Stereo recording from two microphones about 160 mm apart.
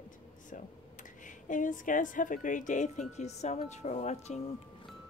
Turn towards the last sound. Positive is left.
turn(degrees=45)  # may be behind; listen again after turning